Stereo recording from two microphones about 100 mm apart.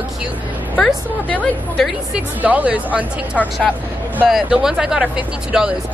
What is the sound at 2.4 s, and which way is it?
Speech, 15° right (ahead or behind).